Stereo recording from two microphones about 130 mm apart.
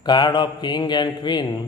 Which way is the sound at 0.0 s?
35° left (ahead or behind).